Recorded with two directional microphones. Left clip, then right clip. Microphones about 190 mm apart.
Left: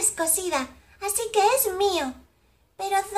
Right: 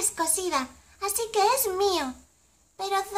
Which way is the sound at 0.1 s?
20° right (ahead or behind).